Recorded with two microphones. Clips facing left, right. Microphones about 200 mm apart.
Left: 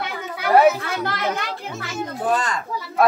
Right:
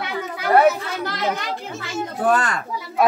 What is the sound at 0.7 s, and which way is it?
Chatter, 55° left (ahead or behind).